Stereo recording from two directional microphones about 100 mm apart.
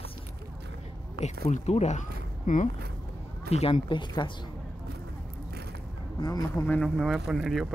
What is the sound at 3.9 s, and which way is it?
Speech, 50° left (ahead or behind).